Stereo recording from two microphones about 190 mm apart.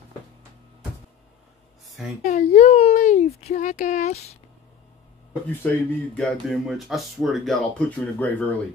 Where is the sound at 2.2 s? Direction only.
40° left (ahead or behind).